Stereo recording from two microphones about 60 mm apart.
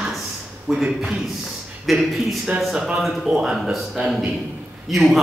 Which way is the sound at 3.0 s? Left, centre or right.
Centre.